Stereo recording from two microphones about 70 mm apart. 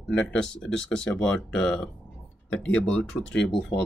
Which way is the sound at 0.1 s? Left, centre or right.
Centre.